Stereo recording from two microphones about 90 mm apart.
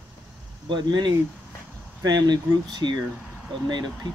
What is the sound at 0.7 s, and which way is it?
Speech, 55° right (ahead or behind).